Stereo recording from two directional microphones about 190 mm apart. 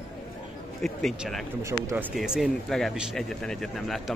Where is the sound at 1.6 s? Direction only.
10° right (ahead or behind).